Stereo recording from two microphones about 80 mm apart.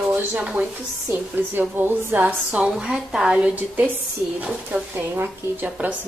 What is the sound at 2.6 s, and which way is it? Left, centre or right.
Speech, centre.